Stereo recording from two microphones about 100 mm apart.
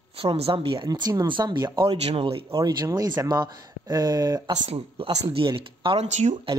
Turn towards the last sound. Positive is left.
turn(degrees=-55)  # may be behind; listen again after turning